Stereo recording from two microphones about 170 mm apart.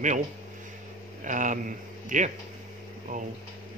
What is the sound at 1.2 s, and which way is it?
Speech, 50° right (ahead or behind).